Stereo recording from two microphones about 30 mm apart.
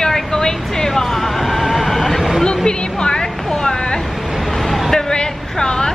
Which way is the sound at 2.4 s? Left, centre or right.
Left.